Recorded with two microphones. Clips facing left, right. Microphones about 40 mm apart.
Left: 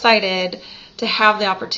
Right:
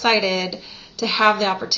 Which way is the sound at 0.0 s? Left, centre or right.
Left.